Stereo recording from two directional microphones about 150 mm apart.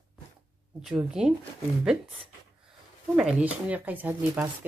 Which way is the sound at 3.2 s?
5° right (ahead or behind).